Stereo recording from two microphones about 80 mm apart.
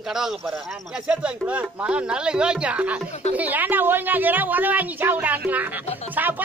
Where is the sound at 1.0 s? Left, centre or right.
Centre.